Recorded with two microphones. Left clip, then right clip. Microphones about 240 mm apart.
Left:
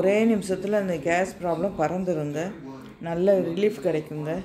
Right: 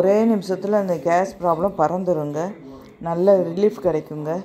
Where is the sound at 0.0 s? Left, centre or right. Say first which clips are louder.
Right 4 dB; centre.